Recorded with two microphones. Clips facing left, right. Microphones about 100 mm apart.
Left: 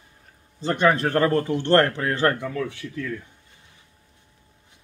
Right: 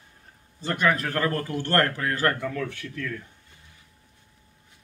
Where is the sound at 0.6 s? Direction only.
30° left (ahead or behind).